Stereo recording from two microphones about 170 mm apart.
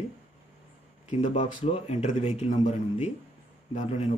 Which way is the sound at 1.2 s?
45° left (ahead or behind).